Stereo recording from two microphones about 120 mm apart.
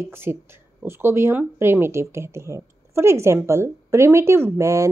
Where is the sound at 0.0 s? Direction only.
20° right (ahead or behind).